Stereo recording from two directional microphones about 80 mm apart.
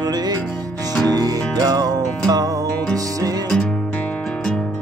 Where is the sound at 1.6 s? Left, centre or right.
Right.